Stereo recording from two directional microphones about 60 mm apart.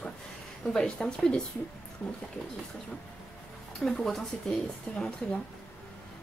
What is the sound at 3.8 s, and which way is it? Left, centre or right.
Speech, centre.